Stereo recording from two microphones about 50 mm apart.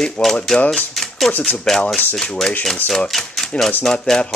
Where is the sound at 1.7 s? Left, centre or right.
Centre.